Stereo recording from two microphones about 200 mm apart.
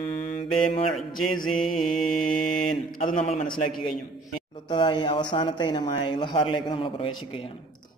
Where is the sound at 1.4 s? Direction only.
Centre (ahead or behind).